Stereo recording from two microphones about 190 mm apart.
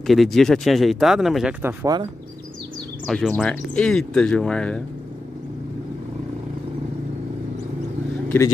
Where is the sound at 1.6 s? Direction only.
20° right (ahead or behind).